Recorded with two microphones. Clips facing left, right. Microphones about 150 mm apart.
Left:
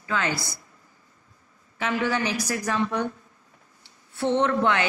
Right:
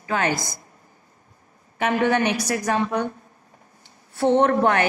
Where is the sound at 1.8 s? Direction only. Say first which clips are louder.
Right 5 dB; 55° right (ahead or behind).